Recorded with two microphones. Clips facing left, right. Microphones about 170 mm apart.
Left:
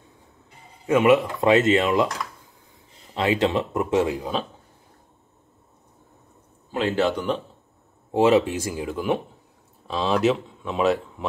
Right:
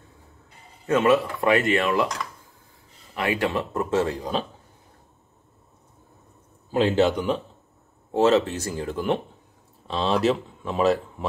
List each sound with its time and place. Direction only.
0.8 s speech: 15° left (ahead or behind)
3.2 s speech: 20° left (ahead or behind)
7.0 s speech: 10° right (ahead or behind)
8.1 s speech: 15° left (ahead or behind)